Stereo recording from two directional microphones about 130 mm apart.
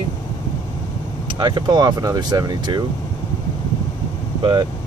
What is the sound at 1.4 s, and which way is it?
Speech, 30° right (ahead or behind).